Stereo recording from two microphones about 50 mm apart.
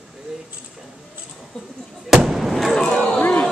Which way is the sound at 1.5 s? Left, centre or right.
Centre.